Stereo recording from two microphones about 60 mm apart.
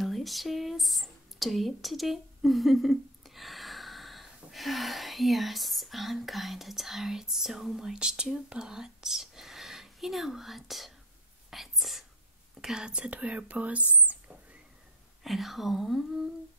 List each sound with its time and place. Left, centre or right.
0.0 s speech: centre; by 14.6 s right
15.2 s speech: centre